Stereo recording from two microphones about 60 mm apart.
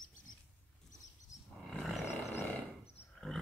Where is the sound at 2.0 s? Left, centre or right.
Left.